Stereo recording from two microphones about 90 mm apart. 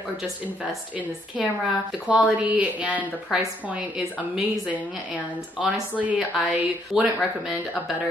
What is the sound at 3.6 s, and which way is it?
A woman's voice, 15° right (ahead or behind).